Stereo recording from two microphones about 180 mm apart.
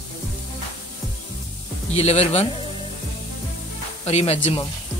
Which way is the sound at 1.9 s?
35° left (ahead or behind).